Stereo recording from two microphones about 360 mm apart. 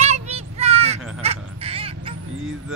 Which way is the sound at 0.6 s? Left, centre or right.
Centre.